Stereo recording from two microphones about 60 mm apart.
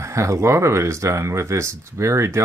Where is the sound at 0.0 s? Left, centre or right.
Right.